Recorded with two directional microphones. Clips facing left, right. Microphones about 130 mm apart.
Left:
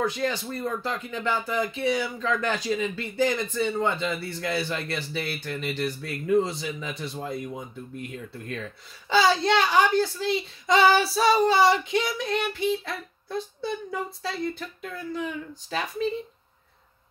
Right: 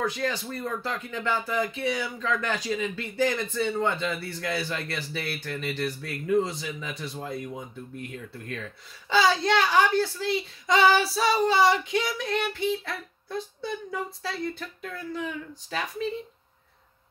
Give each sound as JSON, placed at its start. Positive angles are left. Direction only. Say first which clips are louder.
{"t": 0.0, "sound": "speech", "louder": "left 2 dB", "side_deg": 25}
{"t": 3.2, "sound": "speech", "louder": "left 1 dB", "side_deg": 20}
{"t": 9.1, "sound": "speech", "louder": "left 1 dB", "side_deg": 30}
{"t": 13.3, "sound": "speech", "louder": "left 2 dB", "side_deg": 30}